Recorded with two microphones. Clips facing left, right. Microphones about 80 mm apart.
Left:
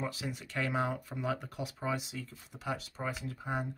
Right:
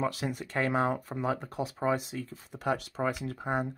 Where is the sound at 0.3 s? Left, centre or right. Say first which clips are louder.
Right 5 dB; right.